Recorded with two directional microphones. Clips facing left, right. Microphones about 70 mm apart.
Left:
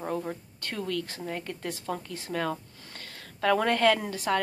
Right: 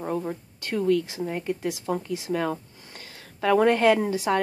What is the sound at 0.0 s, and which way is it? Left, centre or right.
Speech, centre.